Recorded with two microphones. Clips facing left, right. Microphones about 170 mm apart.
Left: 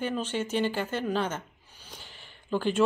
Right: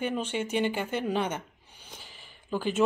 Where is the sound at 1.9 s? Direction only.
5° right (ahead or behind).